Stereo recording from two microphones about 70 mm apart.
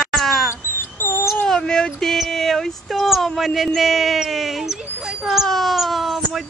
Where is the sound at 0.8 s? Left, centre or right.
Left.